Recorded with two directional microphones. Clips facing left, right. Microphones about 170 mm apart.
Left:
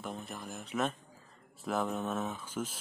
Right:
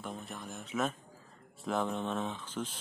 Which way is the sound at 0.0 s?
Centre (ahead or behind).